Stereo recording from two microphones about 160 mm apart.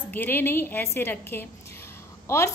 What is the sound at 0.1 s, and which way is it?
A woman's voice, 10° left (ahead or behind).